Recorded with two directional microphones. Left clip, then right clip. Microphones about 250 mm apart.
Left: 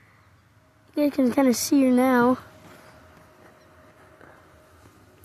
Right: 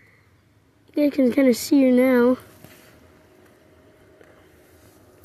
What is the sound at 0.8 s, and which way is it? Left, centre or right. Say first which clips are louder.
Speech: right 3 dB; centre.